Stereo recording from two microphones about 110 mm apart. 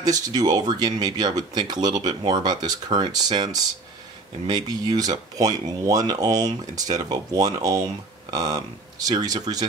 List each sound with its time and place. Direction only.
0.0 s speech: 35° right (ahead or behind)